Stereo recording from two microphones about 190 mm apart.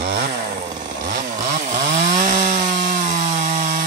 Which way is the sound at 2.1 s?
40° right (ahead or behind).